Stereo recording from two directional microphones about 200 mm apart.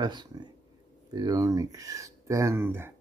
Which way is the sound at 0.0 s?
20° right (ahead or behind).